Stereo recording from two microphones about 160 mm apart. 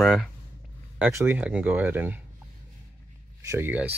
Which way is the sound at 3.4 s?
15° right (ahead or behind).